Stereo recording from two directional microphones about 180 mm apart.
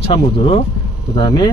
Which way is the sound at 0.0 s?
30° left (ahead or behind).